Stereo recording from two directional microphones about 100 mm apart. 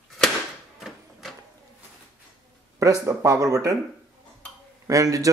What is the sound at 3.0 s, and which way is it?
Speech, 35° right (ahead or behind).